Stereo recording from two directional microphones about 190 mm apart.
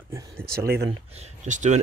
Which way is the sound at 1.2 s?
40° right (ahead or behind).